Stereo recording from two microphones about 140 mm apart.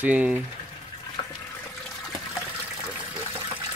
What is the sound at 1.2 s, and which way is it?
Water, 30° left (ahead or behind).